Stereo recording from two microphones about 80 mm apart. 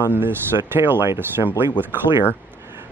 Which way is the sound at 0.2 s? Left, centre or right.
Right.